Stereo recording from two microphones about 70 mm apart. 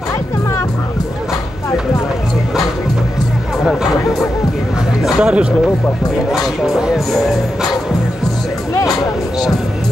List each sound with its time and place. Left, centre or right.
5.0 s speech: centre
6.3 s speech: centre
8.7 s music: left